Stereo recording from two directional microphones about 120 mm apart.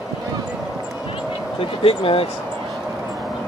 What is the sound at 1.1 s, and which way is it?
Vehicle, 50° left (ahead or behind).